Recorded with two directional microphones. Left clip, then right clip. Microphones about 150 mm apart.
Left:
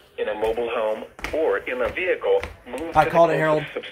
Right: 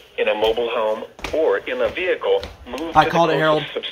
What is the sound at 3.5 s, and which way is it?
Speech, 20° right (ahead or behind).